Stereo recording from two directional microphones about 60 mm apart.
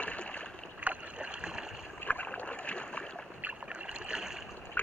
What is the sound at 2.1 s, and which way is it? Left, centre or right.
Boat, left.